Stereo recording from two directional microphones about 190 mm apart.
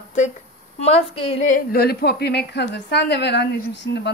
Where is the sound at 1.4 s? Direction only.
50° left (ahead or behind).